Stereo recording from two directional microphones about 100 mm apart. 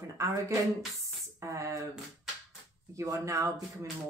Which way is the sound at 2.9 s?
30° right (ahead or behind).